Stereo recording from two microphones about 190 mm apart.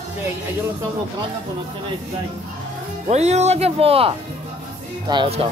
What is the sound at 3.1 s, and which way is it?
Speech, 35° right (ahead or behind).